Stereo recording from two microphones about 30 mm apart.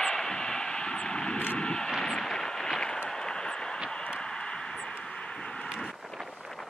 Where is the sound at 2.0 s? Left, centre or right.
Centre.